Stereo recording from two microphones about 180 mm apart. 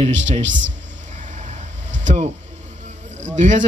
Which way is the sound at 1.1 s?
45° right (ahead or behind).